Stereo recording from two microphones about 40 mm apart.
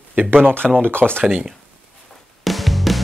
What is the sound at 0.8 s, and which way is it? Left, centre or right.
Speech, right.